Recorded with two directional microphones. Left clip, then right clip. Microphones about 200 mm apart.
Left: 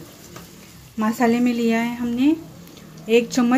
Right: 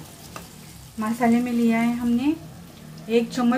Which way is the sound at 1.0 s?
50° left (ahead or behind).